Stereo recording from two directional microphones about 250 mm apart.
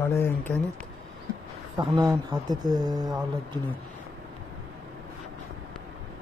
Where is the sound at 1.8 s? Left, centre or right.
Centre.